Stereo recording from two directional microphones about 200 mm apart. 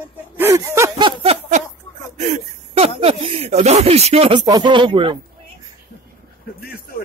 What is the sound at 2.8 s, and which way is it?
Speech, 30° right (ahead or behind).